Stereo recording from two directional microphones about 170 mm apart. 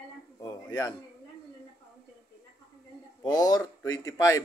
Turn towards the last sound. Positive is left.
turn(degrees=20)  # may be behind; listen again after turning